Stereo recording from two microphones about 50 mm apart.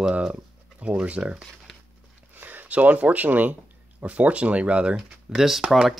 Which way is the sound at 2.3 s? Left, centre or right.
Right.